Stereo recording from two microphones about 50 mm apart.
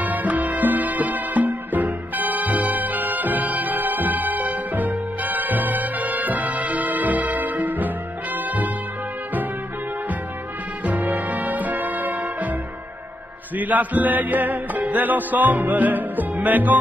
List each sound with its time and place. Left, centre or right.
0.0 s music: right
10.8 s music: right
13.6 s music: right